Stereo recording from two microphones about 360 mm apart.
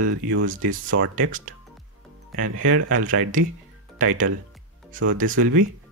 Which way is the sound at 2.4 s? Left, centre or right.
Right.